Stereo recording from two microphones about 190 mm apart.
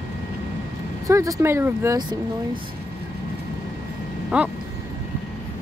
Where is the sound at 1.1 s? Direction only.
15° right (ahead or behind).